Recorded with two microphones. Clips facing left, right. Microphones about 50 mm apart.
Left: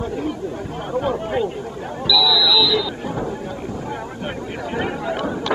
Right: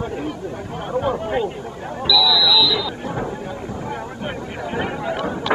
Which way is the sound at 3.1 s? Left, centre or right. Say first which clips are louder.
Even; right.